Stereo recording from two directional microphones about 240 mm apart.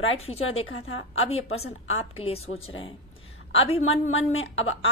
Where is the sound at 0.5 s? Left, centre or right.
Left.